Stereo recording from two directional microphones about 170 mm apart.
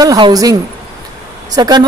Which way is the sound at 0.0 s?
20° right (ahead or behind).